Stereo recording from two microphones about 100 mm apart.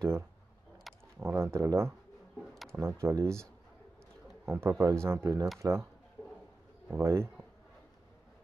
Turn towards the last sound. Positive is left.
turn(degrees=-30)  # may be behind; listen again after turning